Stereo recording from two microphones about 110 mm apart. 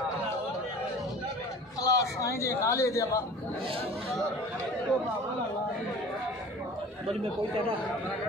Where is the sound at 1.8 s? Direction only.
30° left (ahead or behind).